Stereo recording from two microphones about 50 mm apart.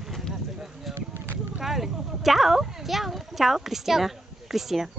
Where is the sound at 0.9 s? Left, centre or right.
Right.